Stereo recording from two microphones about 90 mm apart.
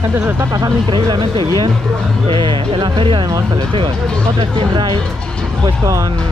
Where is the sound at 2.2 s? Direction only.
80° right.